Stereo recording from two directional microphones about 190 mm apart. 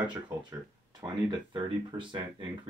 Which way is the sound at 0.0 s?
25° right (ahead or behind).